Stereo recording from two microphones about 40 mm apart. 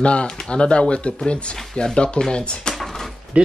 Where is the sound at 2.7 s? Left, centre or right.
Centre.